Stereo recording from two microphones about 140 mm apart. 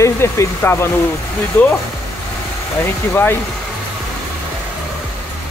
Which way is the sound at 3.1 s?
15° left (ahead or behind).